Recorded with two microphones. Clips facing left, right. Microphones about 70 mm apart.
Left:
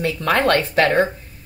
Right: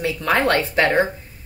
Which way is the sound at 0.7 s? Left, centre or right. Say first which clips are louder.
Left 1 dB; centre.